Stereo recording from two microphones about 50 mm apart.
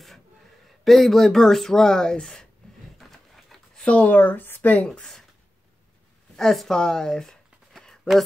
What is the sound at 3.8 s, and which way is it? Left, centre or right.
Speech, left.